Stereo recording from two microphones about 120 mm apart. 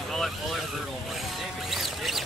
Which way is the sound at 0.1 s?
Centre (ahead or behind).